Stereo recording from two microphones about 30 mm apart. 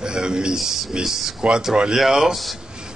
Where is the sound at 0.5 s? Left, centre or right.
Centre.